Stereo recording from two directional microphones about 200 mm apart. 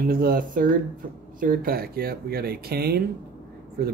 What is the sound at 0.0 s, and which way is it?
Speech, 45° right (ahead or behind).